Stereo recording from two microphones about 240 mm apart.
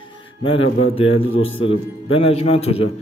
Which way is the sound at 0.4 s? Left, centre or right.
Left.